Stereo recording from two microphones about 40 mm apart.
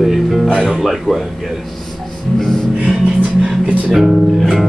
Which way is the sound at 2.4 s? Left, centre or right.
Centre.